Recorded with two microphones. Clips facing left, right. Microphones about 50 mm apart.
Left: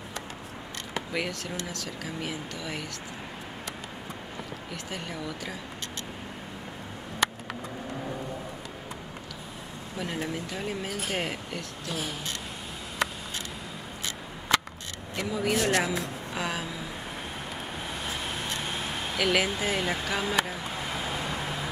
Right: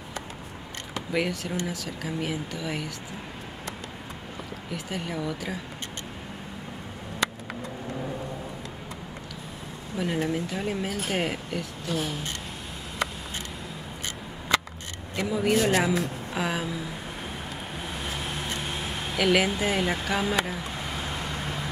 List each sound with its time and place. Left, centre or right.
1.1 s speech: centre
4.6 s speech: centre
9.9 s speech: centre
15.1 s speech: centre
17.7 s vehicle: centre